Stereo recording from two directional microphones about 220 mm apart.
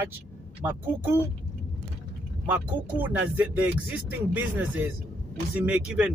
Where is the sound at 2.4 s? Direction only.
10° right (ahead or behind).